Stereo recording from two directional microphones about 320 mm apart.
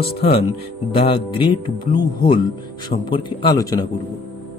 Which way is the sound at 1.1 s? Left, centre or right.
Centre.